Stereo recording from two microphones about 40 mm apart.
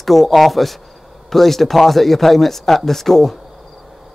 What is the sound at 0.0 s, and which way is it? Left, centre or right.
Speech, centre.